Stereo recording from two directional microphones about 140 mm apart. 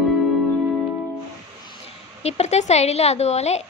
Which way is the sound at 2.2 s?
50° left (ahead or behind).